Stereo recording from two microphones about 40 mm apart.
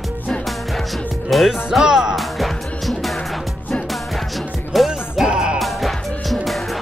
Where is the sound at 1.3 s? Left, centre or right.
Centre.